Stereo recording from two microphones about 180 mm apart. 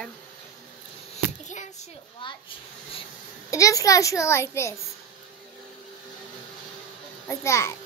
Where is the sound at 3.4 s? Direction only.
20° left (ahead or behind).